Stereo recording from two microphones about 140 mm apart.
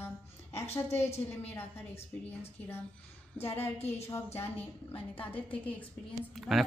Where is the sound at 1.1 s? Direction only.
50° left (ahead or behind).